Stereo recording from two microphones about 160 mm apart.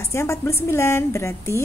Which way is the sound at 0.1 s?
15° left (ahead or behind).